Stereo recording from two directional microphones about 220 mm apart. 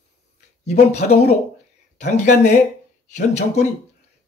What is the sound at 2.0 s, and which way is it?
Speech, 30° left (ahead or behind).